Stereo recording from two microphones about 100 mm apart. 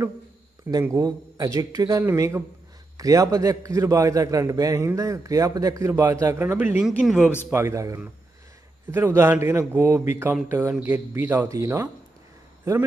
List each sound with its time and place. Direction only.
0.9 s a man's voice: 35° right (ahead or behind)
6.3 s speech: 20° right (ahead or behind)
7.5 s speech: 30° right (ahead or behind)
11.4 s speech: 30° right (ahead or behind)